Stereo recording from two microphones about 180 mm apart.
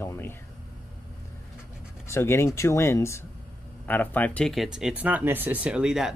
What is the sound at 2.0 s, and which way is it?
Speech, 15° left (ahead or behind).